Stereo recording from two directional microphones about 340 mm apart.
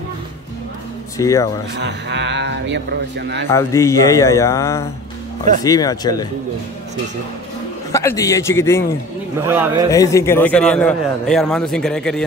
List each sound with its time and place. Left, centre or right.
1.1 s speech: centre
1.8 s speech: right
3.4 s speech: centre
7.9 s speech: centre
9.4 s a man's voice: centre
9.8 s a man's voice: centre